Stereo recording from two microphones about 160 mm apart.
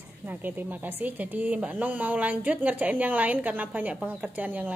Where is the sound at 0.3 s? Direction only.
10° right (ahead or behind).